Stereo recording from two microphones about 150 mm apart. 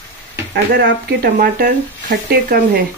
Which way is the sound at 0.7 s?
80° right.